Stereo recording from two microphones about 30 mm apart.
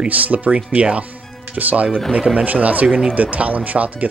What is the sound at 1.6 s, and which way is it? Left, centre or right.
Speech, right.